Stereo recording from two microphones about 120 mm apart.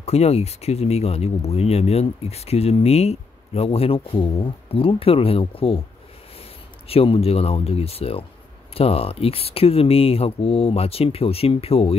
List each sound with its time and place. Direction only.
0.0 s speech: 60° left (ahead or behind)
6.9 s speech: 55° left (ahead or behind)